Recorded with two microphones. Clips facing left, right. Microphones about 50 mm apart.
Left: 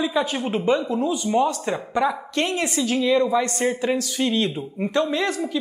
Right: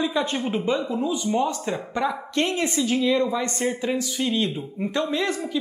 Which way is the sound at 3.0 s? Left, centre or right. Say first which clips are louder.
Left 5 dB; left.